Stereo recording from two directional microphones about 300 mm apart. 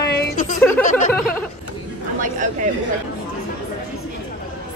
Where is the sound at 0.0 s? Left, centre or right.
Left.